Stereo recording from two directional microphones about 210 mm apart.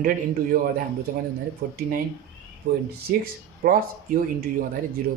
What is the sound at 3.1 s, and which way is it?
Speech, 45° right (ahead or behind).